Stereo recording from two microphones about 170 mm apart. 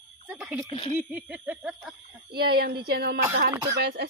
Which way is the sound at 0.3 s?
10° right (ahead or behind).